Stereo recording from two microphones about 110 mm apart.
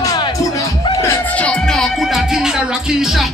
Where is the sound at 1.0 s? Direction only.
15° left (ahead or behind).